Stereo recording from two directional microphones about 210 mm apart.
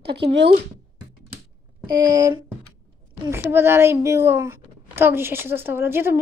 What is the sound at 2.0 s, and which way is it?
A child's voice, 15° right (ahead or behind).